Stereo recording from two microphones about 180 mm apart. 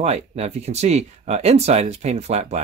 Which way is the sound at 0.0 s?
35° right (ahead or behind).